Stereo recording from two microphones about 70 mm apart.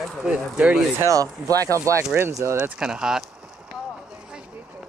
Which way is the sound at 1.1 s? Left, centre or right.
Right.